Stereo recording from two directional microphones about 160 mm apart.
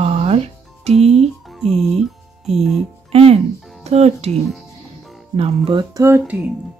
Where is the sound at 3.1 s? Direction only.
40° right (ahead or behind).